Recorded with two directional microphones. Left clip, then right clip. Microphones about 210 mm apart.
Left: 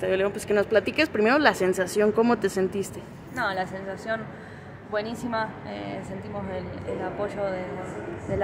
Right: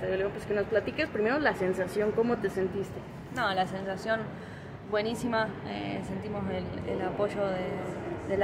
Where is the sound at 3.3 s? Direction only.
Centre (ahead or behind).